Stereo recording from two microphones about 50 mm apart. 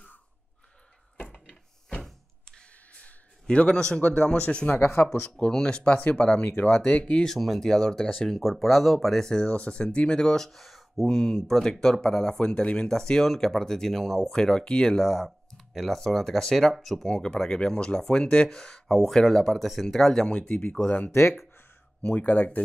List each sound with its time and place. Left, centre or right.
2.4 s a sound: centre
2.9 s a sound: left
3.4 s speech: centre
4.7 s speech: left
5.5 s speech: centre
7.2 s speech: centre
12.4 s speech: left
15.0 s speech: centre
20.2 s speech: left
22.1 s speech: left